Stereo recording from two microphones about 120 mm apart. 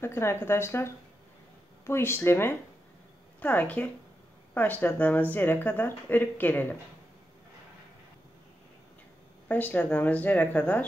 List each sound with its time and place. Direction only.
0.0 s speech: 20° left (ahead or behind)
9.5 s speech: 15° left (ahead or behind)